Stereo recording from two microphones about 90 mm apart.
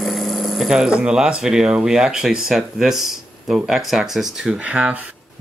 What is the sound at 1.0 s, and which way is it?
Speech, 10° right (ahead or behind).